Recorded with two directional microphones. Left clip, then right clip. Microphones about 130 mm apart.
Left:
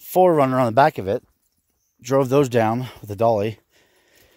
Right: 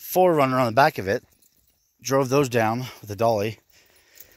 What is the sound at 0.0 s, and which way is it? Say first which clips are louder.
Speech: left 3 dB; 35° left (ahead or behind).